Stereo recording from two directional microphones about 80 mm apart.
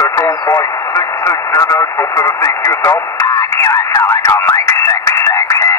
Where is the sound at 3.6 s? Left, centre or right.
Left.